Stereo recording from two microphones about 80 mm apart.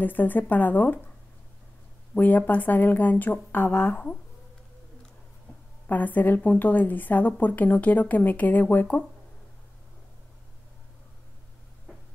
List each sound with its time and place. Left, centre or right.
0.0 s a woman's voice: left
2.1 s a woman's voice: left
5.9 s a woman's voice: left